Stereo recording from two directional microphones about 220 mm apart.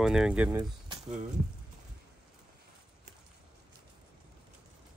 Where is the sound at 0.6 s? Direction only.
20° right (ahead or behind).